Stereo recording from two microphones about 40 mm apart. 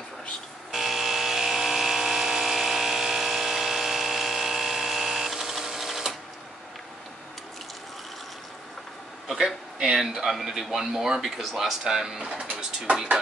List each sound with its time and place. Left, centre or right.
0.7 s electric toothbrush: centre
9.9 s speech: centre
12.3 s pigeon: right